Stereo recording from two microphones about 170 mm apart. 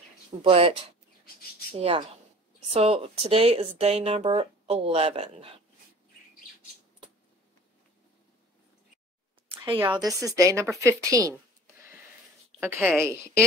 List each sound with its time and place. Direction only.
0.4 s speech: 35° right (ahead or behind)
1.8 s speech: 35° right (ahead or behind)
9.5 s a sound: 10° right (ahead or behind)
9.9 s a woman's voice: 20° right (ahead or behind)
11.1 s a sound: 20° right (ahead or behind)
12.5 s a woman's voice: 10° right (ahead or behind)